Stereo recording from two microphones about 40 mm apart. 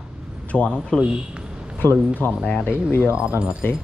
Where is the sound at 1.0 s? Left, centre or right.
Right.